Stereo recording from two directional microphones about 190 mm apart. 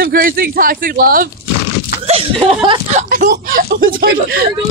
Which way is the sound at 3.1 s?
50° right (ahead or behind).